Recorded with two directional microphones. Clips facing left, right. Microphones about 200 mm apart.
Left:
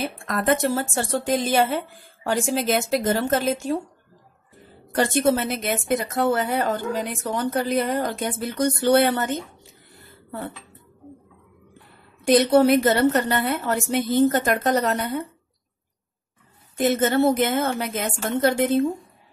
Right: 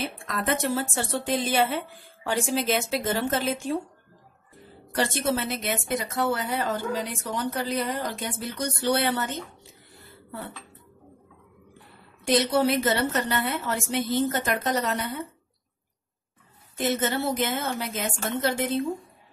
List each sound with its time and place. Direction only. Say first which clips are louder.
0.3 s a woman's voice: left 5 dB; 45° left (ahead or behind)
4.9 s a woman's voice: left 6 dB; 50° left (ahead or behind)
12.3 s a woman's voice: left 6 dB; 50° left (ahead or behind)
16.7 s a woman's voice: left 6 dB; 50° left (ahead or behind)